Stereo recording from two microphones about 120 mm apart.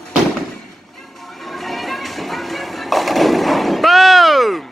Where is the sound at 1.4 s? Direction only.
Centre (ahead or behind).